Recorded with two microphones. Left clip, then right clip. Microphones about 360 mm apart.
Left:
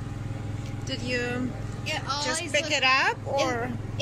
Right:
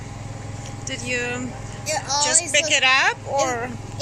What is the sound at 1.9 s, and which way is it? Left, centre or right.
Speech, centre.